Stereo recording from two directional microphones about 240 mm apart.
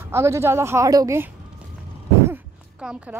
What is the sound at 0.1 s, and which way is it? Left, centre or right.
Speech, centre.